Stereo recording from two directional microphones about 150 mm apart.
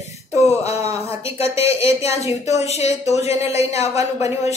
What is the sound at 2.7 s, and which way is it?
A woman's voice, 45° left (ahead or behind).